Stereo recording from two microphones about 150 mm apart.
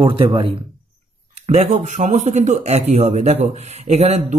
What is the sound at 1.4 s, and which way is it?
A man's voice, 50° right (ahead or behind).